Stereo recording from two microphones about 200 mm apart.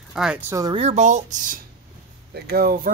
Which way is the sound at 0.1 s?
5° right (ahead or behind).